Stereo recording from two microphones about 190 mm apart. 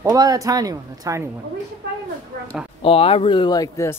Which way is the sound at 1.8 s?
60° right (ahead or behind).